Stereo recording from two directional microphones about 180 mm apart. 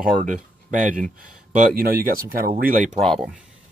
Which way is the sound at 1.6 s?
55° right (ahead or behind).